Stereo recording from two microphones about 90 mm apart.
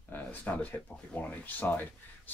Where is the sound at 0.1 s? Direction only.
20° left (ahead or behind).